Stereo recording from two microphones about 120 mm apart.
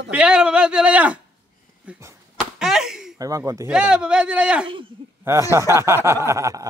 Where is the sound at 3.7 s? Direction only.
10° right (ahead or behind).